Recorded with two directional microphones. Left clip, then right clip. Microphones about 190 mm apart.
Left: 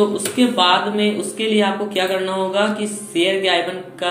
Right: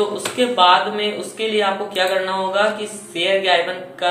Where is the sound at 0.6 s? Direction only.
30° left (ahead or behind).